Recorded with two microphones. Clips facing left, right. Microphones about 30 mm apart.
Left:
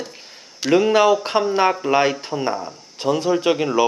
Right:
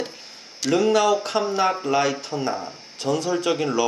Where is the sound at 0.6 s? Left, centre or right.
Centre.